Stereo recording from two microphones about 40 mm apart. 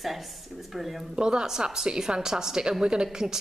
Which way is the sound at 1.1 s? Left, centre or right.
Centre.